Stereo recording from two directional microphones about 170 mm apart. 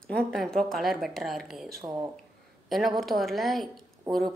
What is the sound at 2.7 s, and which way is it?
A woman's voice, centre (ahead or behind).